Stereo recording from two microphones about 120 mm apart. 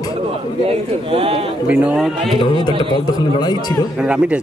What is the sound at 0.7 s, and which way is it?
Speech, 50° right (ahead or behind).